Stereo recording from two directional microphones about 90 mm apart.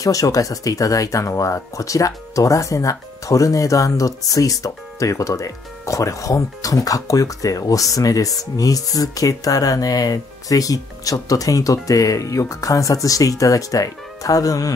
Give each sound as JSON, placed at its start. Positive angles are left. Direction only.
{"t": 0.0, "sound": "speech", "side_deg": 40}